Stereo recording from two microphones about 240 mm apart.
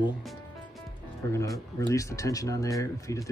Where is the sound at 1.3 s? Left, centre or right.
Centre.